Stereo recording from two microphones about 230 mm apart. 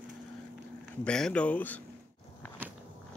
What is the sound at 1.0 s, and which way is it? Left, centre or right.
Speech, centre.